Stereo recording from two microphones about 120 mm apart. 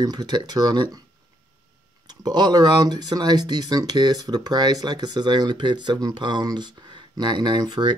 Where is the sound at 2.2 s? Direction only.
35° right (ahead or behind).